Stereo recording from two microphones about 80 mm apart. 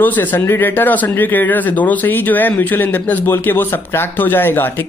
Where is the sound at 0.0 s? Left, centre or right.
Left.